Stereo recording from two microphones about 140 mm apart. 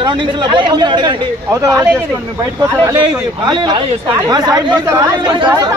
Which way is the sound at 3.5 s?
30° right (ahead or behind).